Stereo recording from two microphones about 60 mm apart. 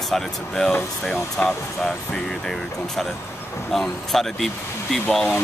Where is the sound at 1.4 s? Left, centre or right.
Centre.